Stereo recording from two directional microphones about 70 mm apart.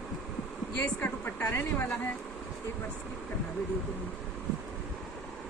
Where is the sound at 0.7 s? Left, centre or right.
Left.